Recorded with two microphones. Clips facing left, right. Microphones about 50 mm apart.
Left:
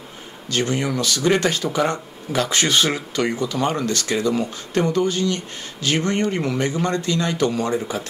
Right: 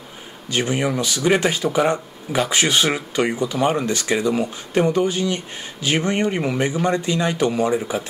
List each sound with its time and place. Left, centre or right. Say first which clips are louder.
0.5 s speech: right 1 dB; centre